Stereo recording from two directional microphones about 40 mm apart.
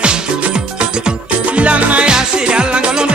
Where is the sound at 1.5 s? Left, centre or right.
Right.